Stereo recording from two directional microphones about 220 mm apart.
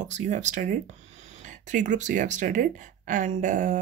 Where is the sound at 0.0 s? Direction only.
35° right (ahead or behind).